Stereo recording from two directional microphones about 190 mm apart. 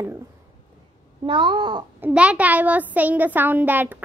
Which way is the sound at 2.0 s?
5° right (ahead or behind).